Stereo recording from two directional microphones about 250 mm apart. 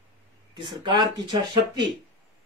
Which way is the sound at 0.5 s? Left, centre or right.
Centre.